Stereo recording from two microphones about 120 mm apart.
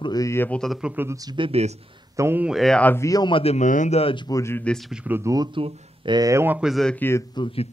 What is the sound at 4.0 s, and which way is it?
Speech, 50° left (ahead or behind).